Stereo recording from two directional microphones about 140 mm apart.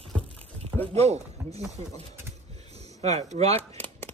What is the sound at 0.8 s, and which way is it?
Speech, 50° right (ahead or behind).